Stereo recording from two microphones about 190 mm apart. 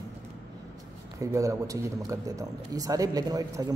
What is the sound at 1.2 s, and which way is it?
Speech, 15° right (ahead or behind).